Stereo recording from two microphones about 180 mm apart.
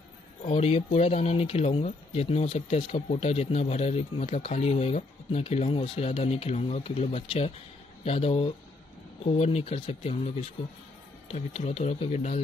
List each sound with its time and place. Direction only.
0.4 s speech: 35° left (ahead or behind)